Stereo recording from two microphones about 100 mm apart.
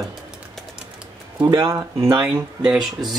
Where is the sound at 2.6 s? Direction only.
5° right (ahead or behind).